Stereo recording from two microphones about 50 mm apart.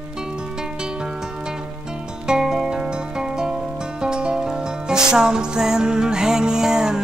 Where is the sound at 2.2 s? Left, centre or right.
Centre.